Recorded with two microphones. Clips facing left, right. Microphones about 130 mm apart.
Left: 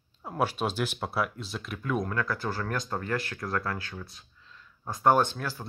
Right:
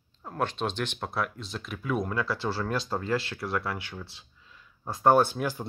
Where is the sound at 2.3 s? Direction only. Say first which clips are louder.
Right 2 dB; 30° right (ahead or behind).